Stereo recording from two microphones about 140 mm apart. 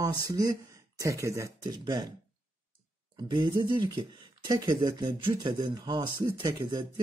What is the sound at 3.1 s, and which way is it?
Speech, 35° right (ahead or behind).